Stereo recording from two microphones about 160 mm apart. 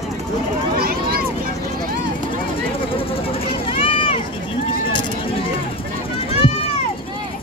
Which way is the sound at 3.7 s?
35° left (ahead or behind).